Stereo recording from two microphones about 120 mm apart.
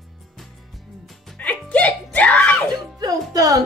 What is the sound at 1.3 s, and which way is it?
Music, 10° left (ahead or behind).